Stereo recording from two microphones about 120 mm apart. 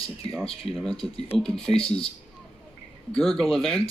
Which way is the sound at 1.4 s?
5° left (ahead or behind).